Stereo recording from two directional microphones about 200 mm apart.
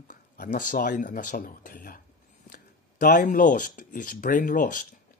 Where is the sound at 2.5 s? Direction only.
45° left (ahead or behind).